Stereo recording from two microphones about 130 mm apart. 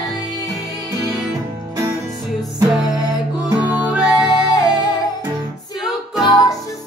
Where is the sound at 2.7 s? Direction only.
5° right (ahead or behind).